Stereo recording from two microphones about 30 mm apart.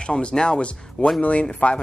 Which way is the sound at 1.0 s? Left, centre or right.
Left.